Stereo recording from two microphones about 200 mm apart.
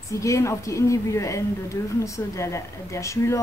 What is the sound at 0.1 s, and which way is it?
A woman's voice, 15° left (ahead or behind).